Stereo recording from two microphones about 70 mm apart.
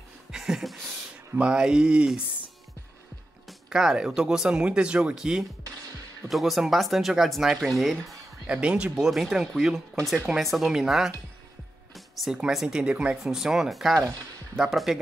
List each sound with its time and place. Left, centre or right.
0.3 s a sound: centre
1.4 s speech: centre
3.4 s speech: centre
8.5 s speech: centre
11.9 s music: centre
12.4 s speech: centre